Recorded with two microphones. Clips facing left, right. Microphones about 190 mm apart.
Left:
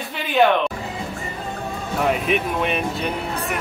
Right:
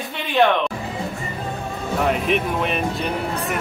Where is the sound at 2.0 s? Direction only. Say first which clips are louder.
Even; centre (ahead or behind).